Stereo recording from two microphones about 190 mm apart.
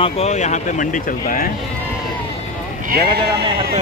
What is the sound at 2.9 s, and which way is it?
Speech, 60° right (ahead or behind).